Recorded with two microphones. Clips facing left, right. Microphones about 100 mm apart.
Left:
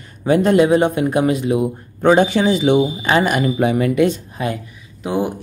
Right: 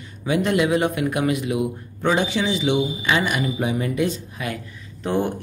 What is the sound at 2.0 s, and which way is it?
Speech, 50° left (ahead or behind).